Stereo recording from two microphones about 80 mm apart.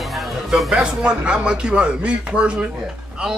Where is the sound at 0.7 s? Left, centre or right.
Centre.